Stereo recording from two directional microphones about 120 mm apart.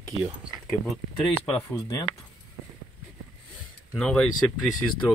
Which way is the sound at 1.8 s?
30° left (ahead or behind).